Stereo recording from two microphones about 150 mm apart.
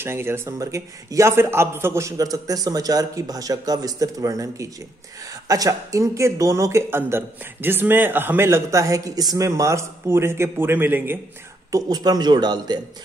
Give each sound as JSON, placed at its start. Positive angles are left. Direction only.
{"t": 0.0, "sound": "a man's voice", "side_deg": -15}
{"t": 11.7, "sound": "a man's voice", "side_deg": -25}